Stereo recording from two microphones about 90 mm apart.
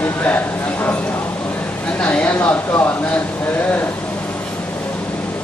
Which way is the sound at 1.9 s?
15° left (ahead or behind).